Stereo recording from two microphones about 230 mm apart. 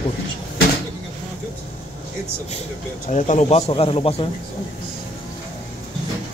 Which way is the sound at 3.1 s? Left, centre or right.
Left.